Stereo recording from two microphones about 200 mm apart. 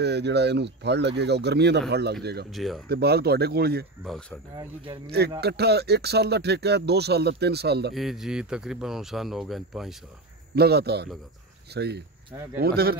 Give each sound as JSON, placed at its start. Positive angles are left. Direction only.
{"t": 0.0, "sound": "speech", "side_deg": -55}
{"t": 2.5, "sound": "speech", "side_deg": 0}
{"t": 2.9, "sound": "speech", "side_deg": -55}
{"t": 4.6, "sound": "speech", "side_deg": -25}
{"t": 5.4, "sound": "speech", "side_deg": -55}
{"t": 7.9, "sound": "speech", "side_deg": 0}
{"t": 10.5, "sound": "speech", "side_deg": -55}